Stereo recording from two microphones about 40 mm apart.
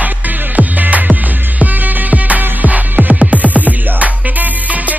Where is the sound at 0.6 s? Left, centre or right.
Right.